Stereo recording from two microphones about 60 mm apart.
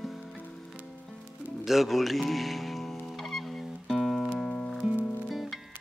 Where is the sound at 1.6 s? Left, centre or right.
Centre.